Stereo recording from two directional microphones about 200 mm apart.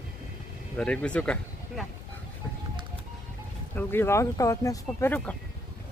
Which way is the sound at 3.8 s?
10° left (ahead or behind).